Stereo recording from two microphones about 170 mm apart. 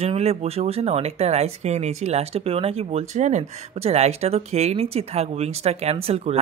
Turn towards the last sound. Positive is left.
turn(degrees=-35)  # may be behind; listen again after turning